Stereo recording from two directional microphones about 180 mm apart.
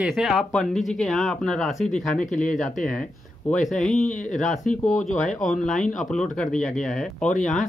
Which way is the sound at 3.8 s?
5° left (ahead or behind).